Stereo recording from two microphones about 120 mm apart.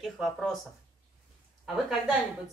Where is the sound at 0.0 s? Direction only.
Centre (ahead or behind).